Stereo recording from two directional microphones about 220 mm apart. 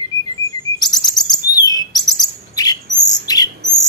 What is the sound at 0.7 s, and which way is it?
Chirp, 20° left (ahead or behind).